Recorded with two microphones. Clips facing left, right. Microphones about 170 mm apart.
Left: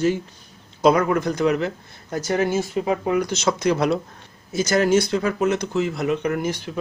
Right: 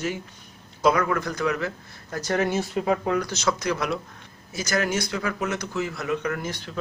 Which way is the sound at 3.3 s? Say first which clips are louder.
Left 5 dB; 25° left (ahead or behind).